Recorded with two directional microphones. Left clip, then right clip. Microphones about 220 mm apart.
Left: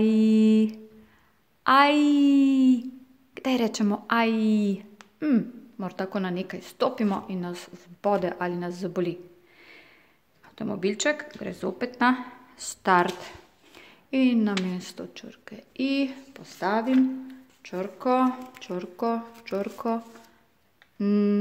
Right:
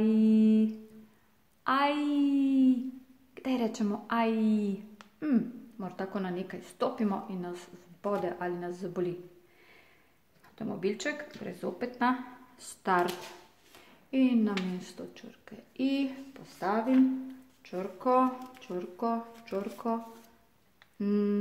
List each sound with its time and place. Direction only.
0.0 s music: 45° left (ahead or behind)
1.6 s a sound: 45° left (ahead or behind)
3.3 s a woman's voice: 45° left (ahead or behind)
10.5 s a woman's voice: 45° left (ahead or behind)
14.1 s a woman's voice: 45° left (ahead or behind)
21.0 s a woman's voice: 45° left (ahead or behind)